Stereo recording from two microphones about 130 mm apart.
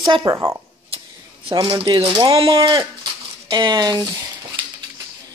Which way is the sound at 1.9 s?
45° right (ahead or behind).